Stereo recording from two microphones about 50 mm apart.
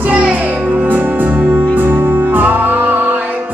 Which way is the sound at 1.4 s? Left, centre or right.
Right.